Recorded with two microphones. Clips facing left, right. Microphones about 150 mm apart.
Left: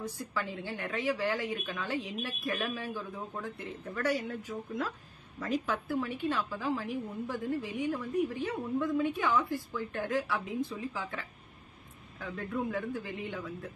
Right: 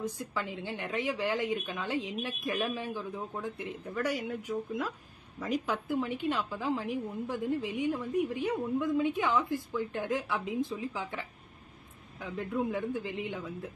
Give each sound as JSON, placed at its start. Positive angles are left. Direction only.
{"t": 0.0, "sound": "a woman's voice", "side_deg": -20}